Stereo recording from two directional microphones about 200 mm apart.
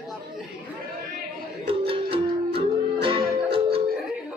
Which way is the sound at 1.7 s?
25° right (ahead or behind).